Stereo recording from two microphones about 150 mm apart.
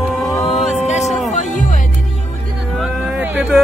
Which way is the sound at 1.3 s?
60° left (ahead or behind).